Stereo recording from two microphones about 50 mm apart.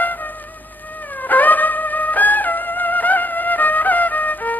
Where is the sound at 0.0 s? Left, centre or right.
Left.